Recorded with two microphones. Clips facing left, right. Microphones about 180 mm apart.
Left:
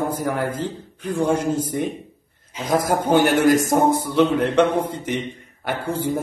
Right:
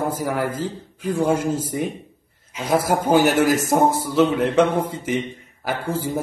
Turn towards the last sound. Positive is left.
turn(degrees=0)  # may be behind; listen again after turning